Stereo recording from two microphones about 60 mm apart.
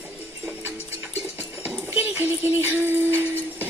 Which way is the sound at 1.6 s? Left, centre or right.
Right.